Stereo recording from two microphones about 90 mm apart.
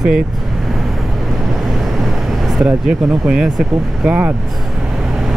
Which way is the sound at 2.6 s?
10° right (ahead or behind).